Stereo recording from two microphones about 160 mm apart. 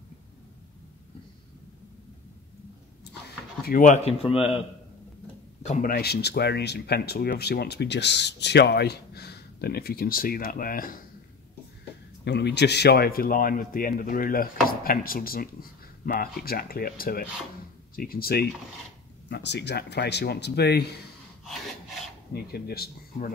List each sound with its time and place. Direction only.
3.3 s door: 75° left (ahead or behind)
3.8 s speech: 50° left (ahead or behind)
4.2 s a man's voice: 35° left (ahead or behind)
5.6 s speech: 50° left (ahead or behind)
12.3 s speech: 90° left; by 18.5 s 70° left (ahead or behind)
19.2 s speech: 90° left
21.5 s rub: centre (ahead or behind)
22.3 s speech: 75° left (ahead or behind)